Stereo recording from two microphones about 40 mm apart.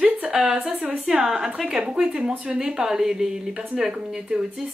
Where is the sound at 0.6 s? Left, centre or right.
Right.